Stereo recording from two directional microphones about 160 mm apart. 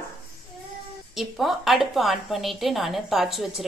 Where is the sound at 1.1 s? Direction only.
Centre (ahead or behind).